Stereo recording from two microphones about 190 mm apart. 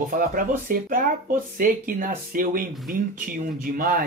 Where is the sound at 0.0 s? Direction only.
45° right (ahead or behind).